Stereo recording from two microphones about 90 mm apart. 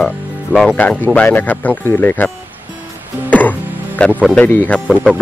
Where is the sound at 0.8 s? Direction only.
20° left (ahead or behind).